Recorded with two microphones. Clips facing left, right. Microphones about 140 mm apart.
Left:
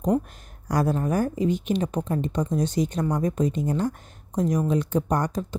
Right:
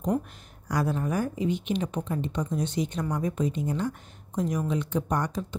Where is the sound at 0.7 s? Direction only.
45° left (ahead or behind).